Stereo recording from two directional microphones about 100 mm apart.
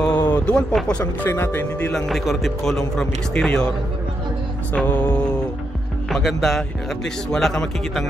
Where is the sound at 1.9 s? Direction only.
Centre (ahead or behind).